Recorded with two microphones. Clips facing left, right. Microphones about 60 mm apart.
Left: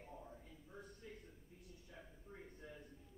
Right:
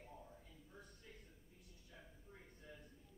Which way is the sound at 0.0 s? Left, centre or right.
Centre.